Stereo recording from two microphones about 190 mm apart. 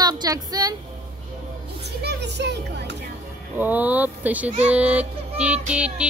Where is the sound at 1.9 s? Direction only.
60° right (ahead or behind).